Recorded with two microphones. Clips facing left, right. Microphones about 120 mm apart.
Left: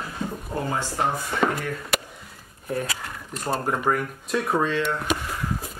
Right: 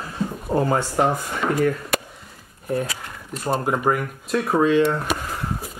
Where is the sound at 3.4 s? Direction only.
5° right (ahead or behind).